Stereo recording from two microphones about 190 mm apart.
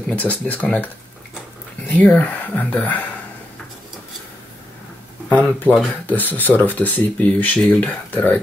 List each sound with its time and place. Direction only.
0.0 s speech: 10° left (ahead or behind)
2.0 s speech: 5° left (ahead or behind)
5.3 s speech: 10° left (ahead or behind)